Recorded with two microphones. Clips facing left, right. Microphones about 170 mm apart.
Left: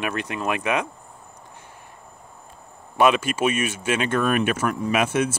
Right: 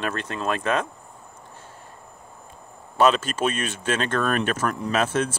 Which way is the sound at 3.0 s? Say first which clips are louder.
Left 1 dB; 10° left (ahead or behind).